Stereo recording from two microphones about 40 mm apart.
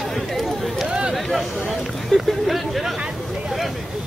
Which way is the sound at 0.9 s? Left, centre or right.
Centre.